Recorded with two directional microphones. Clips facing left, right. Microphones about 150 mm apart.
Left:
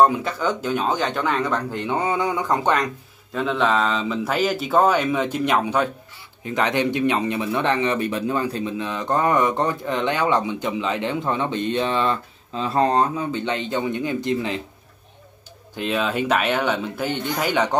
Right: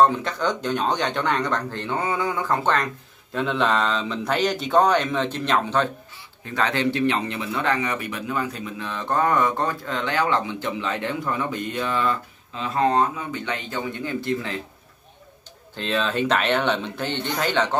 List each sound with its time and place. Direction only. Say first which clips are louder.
0.0 s speech: left 1 dB; 10° left (ahead or behind)
3.3 s speech: left 1 dB; centre (ahead or behind); by 8.7 s 30° left (ahead or behind)
8.7 s speech: right 1 dB; 20° left (ahead or behind)
12.5 s speech: left 2 dB; 35° left (ahead or behind)
13.5 s speech: left 4 dB; 20° left (ahead or behind)
15.7 s speech: left 1 dB; 10° left (ahead or behind)